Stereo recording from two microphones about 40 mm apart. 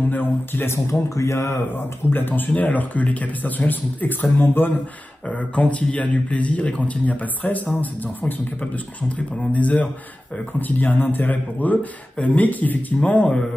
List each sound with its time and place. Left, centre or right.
0.1 s speech: left
1.0 s speech: left
5.3 s speech: left
9.4 s speech: left